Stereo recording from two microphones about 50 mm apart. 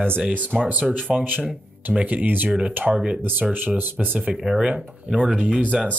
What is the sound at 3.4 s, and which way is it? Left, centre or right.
Speech, right.